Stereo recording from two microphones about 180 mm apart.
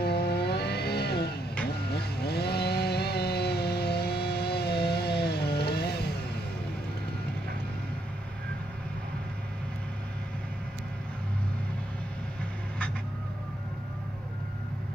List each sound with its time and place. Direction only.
0.0 s vehicle: 65° left (ahead or behind)
1.9 s chainsaw: 65° left (ahead or behind)